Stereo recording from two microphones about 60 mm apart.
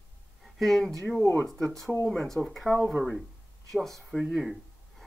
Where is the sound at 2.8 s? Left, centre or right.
Right.